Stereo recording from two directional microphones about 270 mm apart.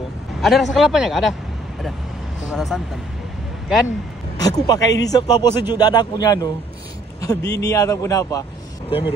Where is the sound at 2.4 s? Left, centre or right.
Centre.